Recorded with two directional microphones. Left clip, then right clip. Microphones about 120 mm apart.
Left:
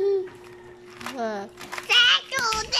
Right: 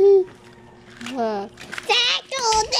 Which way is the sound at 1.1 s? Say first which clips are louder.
Right 6 dB; 10° right (ahead or behind).